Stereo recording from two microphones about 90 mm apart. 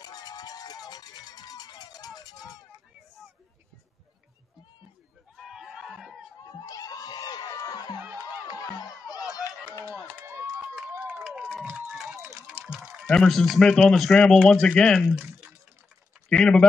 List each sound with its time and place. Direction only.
0.0 s run: 50° left (ahead or behind)
5.3 s a sound: 5° right (ahead or behind)
6.6 s music: 40° left (ahead or behind)
8.5 s a sound: 45° left (ahead or behind)
11.0 s crowd: 15° right (ahead or behind)
12.4 s run: 10° right (ahead or behind)
13.0 s a man's voice: 5° left (ahead or behind)
16.3 s speech: 10° left (ahead or behind)